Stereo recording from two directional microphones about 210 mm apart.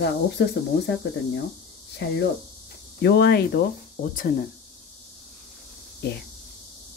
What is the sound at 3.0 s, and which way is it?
Speech, 55° left (ahead or behind).